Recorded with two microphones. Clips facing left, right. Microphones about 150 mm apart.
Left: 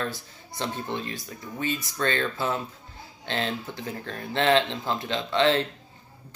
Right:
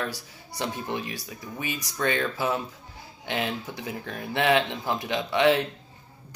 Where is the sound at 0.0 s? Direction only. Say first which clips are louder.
Left 1 dB; 10° right (ahead or behind).